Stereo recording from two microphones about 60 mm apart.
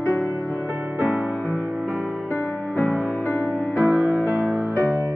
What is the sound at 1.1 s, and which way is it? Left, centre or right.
Music, right.